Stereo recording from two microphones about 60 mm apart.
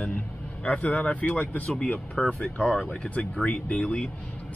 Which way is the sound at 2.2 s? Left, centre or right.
Centre.